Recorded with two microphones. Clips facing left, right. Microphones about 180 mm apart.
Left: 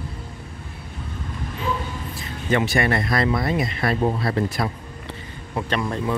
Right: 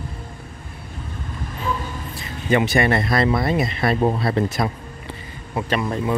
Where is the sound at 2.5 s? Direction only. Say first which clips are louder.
Right 3 dB; 20° right (ahead or behind).